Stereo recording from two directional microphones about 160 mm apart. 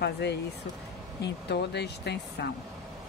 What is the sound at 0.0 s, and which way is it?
Speech, 90° left.